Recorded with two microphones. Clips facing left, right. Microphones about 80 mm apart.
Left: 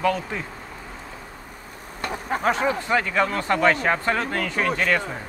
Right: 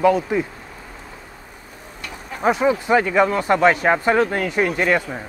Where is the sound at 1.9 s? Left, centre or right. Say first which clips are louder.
Left 7 dB; left.